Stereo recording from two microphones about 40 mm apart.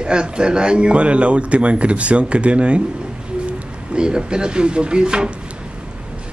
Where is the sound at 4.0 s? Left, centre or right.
Right.